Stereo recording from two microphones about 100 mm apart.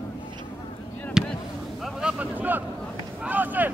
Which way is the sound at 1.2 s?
5° right (ahead or behind).